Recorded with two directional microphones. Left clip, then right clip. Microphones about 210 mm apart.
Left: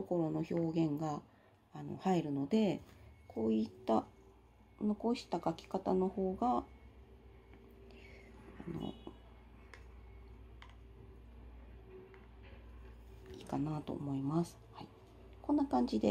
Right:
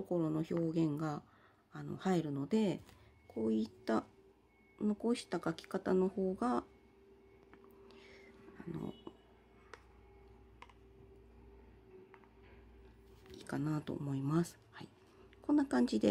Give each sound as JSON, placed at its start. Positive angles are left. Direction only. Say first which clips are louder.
{"t": 0.1, "sound": "speech", "louder": "even", "side_deg": -25}
{"t": 4.7, "sound": "speech", "louder": "even", "side_deg": -55}
{"t": 5.1, "sound": "speech", "louder": "left 1 dB", "side_deg": -25}
{"t": 7.9, "sound": "a sound", "louder": "left 1 dB", "side_deg": -25}
{"t": 13.3, "sound": "speech", "louder": "even", "side_deg": -25}